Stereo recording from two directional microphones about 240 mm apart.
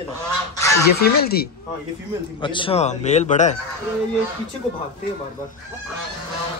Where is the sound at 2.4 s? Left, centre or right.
Left.